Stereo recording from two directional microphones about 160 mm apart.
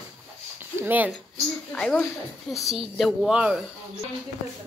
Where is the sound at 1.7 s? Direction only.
5° left (ahead or behind).